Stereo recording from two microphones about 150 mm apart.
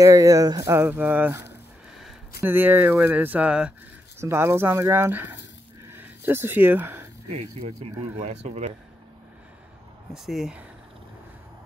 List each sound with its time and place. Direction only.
0.0 s speech: 20° right (ahead or behind)
0.7 s speech: 15° right (ahead or behind)
5.9 s a sound: 15° right (ahead or behind)
8.2 s speech: 50° right (ahead or behind)
10.1 s speech: centre (ahead or behind)